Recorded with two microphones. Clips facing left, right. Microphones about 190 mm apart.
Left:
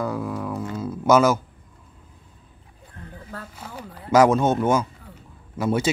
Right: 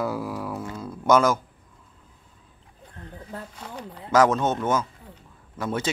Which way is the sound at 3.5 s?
5° left (ahead or behind).